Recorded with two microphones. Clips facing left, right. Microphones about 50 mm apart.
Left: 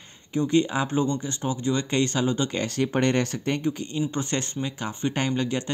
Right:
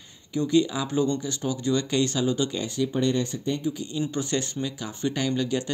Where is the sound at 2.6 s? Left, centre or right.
Left.